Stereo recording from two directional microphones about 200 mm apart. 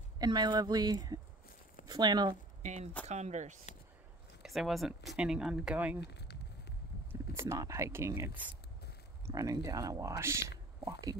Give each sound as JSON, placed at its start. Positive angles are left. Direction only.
{"t": 0.2, "sound": "speech", "side_deg": -20}
{"t": 2.6, "sound": "speech", "side_deg": -35}
{"t": 4.4, "sound": "speech", "side_deg": 0}
{"t": 5.9, "sound": "a sound", "side_deg": 55}
{"t": 7.1, "sound": "speech", "side_deg": -15}